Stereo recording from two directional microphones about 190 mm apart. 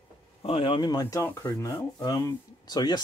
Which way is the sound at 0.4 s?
30° left (ahead or behind).